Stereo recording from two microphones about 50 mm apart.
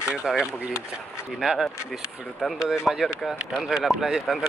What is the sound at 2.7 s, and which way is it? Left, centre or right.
Speech, centre.